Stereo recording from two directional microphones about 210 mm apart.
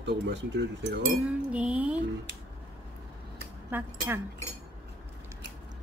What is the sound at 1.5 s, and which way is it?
Speech, 5° right (ahead or behind).